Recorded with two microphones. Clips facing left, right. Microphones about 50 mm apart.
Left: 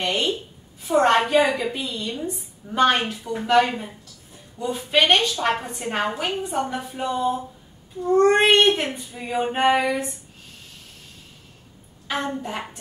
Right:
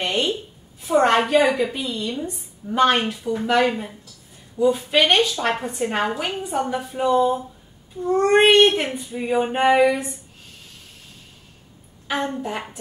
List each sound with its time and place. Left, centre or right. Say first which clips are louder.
0.0 s a sound: right 1 dB; centre
0.8 s a woman's voice: right 1 dB; centre
12.1 s a woman's voice: right 2 dB; centre